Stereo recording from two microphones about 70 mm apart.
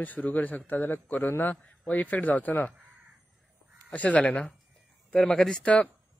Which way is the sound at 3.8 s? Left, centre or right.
Left.